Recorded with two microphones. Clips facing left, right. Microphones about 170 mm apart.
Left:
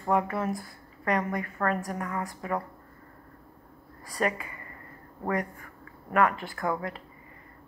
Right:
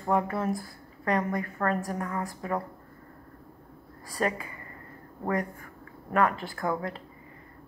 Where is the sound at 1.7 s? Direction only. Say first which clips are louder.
Right 1 dB; centre (ahead or behind).